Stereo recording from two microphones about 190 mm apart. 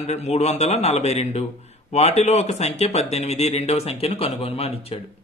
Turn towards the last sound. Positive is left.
turn(degrees=30)  # may be behind; listen again after turning